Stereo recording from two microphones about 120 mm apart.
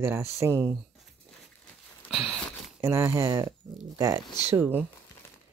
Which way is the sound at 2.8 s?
20° right (ahead or behind).